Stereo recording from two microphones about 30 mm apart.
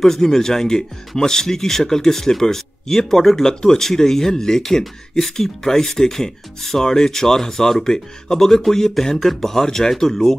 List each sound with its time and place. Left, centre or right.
0.0 s speech: centre
8.4 s speech: centre